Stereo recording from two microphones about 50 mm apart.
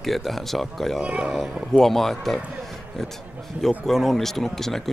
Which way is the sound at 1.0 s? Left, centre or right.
Right.